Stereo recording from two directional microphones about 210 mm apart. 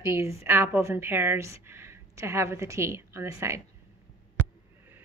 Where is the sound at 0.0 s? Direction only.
15° right (ahead or behind).